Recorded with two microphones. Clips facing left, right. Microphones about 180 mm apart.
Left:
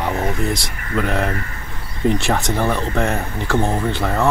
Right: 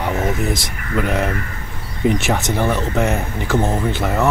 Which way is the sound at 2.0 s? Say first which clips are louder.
Right 1 dB; 15° right (ahead or behind).